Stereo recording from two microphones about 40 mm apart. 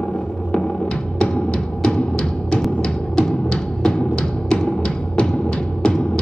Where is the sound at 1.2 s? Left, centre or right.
Left.